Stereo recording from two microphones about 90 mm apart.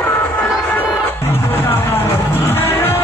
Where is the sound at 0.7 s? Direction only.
20° left (ahead or behind).